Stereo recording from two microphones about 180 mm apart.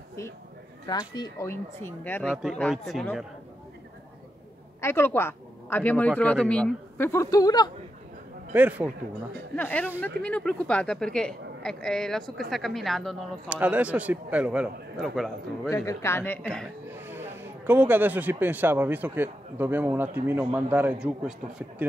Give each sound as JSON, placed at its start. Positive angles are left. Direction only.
{"t": 0.8, "sound": "speech", "side_deg": 25}
{"t": 2.3, "sound": "speech", "side_deg": 0}
{"t": 4.8, "sound": "speech", "side_deg": 15}
{"t": 8.5, "sound": "speech", "side_deg": -10}
{"t": 9.6, "sound": "speech", "side_deg": 10}
{"t": 15.7, "sound": "speech", "side_deg": 15}
{"t": 16.9, "sound": "speech", "side_deg": -10}